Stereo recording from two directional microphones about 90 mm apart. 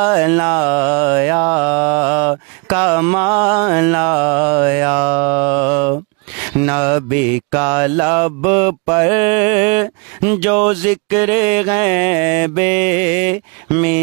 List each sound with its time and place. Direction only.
0.0 s mantra: 20° right (ahead or behind)
2.8 s music: 20° right (ahead or behind)
6.6 s mantra: 20° right (ahead or behind)